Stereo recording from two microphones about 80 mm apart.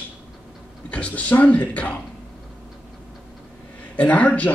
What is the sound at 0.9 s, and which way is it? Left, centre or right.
Speech, centre.